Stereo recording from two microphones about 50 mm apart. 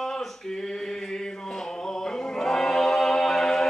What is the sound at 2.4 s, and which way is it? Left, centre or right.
A capella, centre.